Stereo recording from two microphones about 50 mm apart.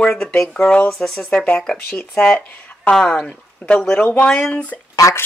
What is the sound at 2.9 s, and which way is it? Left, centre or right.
Speech, centre.